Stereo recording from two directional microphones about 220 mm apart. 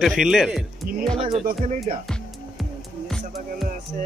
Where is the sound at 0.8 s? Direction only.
40° right (ahead or behind).